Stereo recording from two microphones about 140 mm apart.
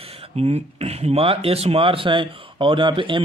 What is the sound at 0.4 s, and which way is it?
Speech, 45° right (ahead or behind).